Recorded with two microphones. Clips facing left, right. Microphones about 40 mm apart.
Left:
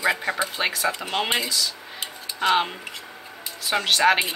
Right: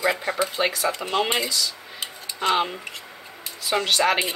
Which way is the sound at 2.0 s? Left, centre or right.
Centre.